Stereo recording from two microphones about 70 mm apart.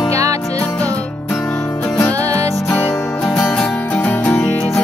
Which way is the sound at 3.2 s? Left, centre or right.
Centre.